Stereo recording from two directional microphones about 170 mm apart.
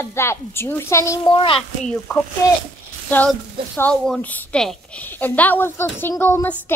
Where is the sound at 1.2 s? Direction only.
30° left (ahead or behind).